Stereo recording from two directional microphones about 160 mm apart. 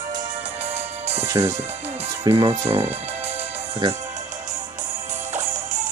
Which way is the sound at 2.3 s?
35° right (ahead or behind).